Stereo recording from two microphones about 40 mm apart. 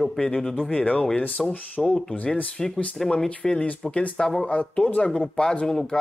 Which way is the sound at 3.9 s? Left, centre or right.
Left.